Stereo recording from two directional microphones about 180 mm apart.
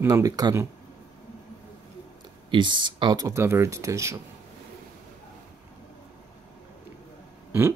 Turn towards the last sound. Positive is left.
turn(degrees=-10)  # may be behind; listen again after turning